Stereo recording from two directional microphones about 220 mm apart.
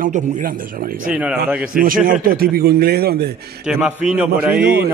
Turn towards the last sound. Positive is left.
turn(degrees=-45)  # may be behind; listen again after turning